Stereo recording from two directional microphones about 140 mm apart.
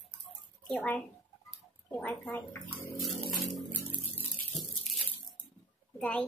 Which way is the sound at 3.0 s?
Centre (ahead or behind).